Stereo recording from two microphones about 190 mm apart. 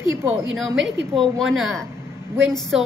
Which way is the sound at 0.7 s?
70° right (ahead or behind).